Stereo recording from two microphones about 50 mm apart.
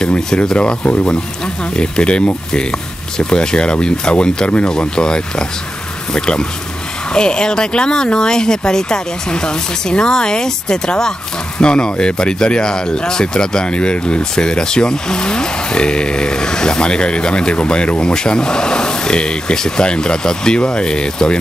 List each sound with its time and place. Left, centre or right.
0.0 s speech: centre